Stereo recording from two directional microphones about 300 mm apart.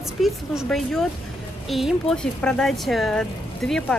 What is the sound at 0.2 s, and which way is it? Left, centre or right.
Speech, centre.